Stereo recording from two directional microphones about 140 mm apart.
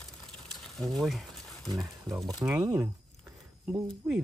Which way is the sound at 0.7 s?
Centre (ahead or behind).